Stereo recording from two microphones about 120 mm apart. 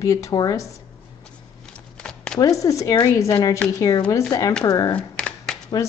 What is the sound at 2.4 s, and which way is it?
Speech, 30° left (ahead or behind).